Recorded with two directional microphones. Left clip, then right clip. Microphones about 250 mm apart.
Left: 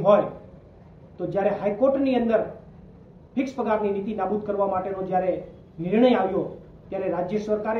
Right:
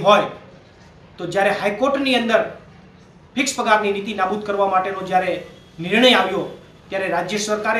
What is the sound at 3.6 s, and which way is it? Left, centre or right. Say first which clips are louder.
A man's voice: right 7 dB; centre.